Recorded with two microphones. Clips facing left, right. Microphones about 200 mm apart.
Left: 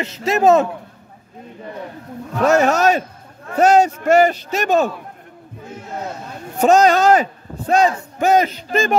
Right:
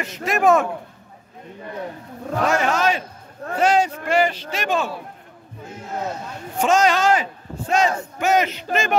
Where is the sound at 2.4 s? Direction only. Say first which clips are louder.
Left 6 dB; 40° left (ahead or behind).